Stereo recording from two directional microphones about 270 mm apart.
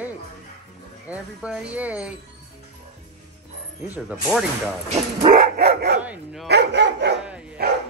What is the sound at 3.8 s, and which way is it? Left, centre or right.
Speech, centre.